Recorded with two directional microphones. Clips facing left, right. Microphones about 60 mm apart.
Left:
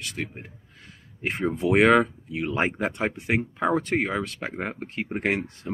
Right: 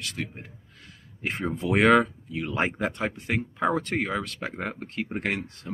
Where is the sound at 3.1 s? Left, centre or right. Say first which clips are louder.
Left 3 dB; centre.